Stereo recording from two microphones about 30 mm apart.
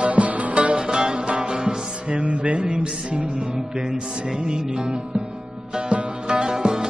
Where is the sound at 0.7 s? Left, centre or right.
Right.